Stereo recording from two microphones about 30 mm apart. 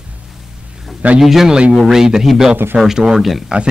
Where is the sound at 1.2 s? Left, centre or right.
Centre.